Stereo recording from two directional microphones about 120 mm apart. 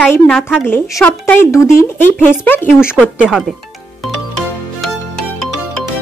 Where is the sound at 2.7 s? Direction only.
5° right (ahead or behind).